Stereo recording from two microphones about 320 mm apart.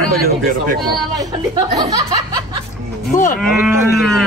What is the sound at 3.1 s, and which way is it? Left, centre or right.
Speech, left.